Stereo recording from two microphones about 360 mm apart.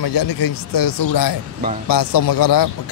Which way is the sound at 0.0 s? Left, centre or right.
Left.